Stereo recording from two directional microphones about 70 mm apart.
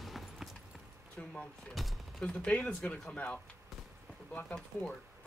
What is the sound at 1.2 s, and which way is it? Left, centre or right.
Speech, centre.